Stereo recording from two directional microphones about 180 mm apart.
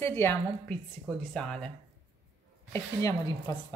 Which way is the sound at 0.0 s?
15° left (ahead or behind).